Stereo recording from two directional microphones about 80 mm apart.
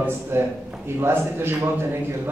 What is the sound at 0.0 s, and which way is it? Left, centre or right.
A man's voice, right.